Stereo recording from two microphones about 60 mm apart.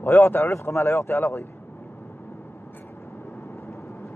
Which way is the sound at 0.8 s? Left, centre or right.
Left.